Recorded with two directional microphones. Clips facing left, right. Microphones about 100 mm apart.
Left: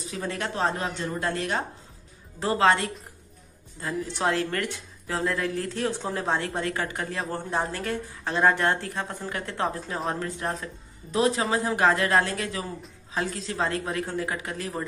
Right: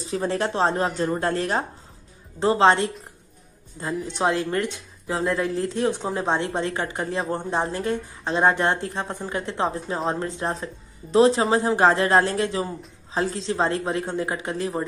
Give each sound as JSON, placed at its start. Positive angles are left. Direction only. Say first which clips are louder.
{"t": 0.0, "sound": "speech", "louder": "right 7 dB", "side_deg": -30}
{"t": 2.4, "sound": "speech", "louder": "right 4 dB", "side_deg": -25}